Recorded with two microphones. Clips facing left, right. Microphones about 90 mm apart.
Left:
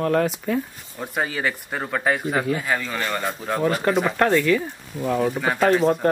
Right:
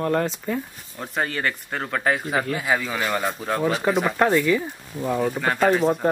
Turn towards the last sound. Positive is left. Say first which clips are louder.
# left 1 dB
turn(degrees=0)  # may be behind; listen again after turning